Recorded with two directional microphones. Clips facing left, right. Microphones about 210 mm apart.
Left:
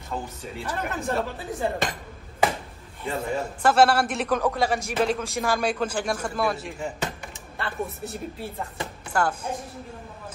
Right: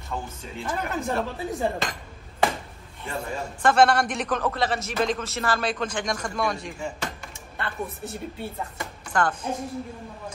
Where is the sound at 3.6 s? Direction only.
5° left (ahead or behind).